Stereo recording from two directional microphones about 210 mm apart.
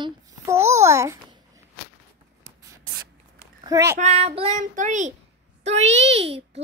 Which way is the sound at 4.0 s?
30° right (ahead or behind).